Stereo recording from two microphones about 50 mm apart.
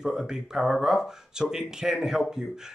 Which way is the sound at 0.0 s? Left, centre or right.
Centre.